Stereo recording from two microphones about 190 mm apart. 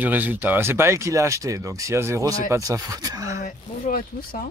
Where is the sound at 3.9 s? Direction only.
40° left (ahead or behind).